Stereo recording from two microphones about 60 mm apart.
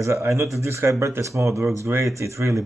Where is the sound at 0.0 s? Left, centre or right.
Right.